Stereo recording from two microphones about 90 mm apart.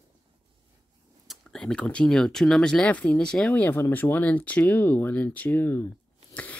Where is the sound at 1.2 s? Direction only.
5° left (ahead or behind); by 5.9 s 25° left (ahead or behind).